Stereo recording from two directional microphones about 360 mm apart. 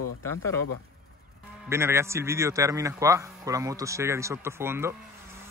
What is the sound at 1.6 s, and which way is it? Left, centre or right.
Speech, centre.